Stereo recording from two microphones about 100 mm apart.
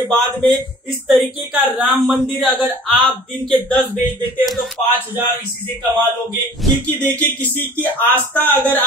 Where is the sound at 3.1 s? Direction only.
15° left (ahead or behind).